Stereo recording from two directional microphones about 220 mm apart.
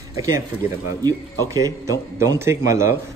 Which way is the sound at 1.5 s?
15° right (ahead or behind).